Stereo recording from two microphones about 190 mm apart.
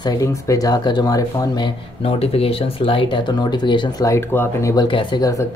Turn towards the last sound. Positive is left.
turn(degrees=20)  # may be behind; listen again after turning